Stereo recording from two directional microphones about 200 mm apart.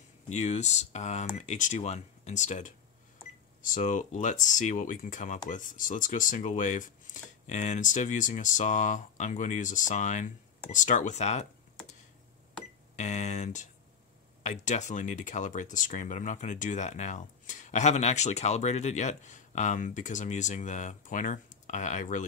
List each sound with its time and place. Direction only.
0.3 s speech: 35° left (ahead or behind)
12.9 s speech: 35° left (ahead or behind)